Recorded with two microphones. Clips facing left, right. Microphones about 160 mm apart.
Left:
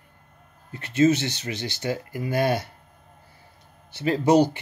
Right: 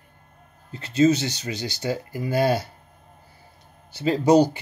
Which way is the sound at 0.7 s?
30° right (ahead or behind).